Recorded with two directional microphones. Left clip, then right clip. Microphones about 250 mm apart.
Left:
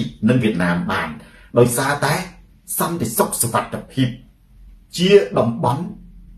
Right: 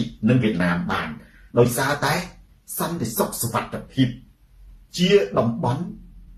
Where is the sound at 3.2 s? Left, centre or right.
Centre.